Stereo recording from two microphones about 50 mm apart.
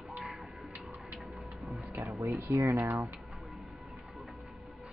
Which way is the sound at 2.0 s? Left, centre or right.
Right.